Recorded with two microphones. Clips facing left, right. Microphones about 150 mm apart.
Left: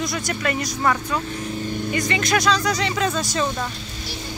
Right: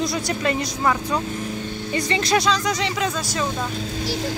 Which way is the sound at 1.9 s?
30° right (ahead or behind).